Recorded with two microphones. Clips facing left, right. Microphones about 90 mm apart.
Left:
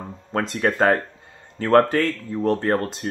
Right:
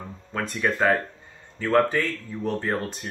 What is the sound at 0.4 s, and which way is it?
Speech, 90° left.